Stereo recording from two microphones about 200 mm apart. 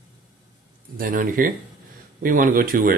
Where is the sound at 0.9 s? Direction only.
45° right (ahead or behind).